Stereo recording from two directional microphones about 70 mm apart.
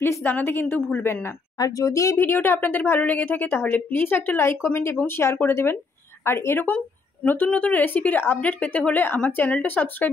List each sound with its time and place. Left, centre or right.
0.2 s a woman's voice: left
1.6 s speech: left
2.1 s a woman's voice: left